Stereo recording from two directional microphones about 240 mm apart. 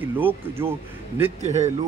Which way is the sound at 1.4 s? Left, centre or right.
Right.